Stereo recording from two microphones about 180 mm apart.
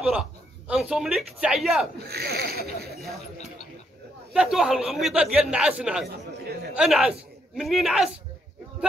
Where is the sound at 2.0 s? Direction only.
60° right (ahead or behind).